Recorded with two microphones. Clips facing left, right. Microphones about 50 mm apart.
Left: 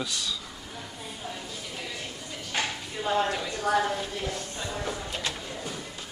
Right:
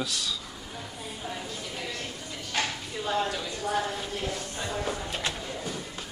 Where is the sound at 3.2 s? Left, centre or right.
Left.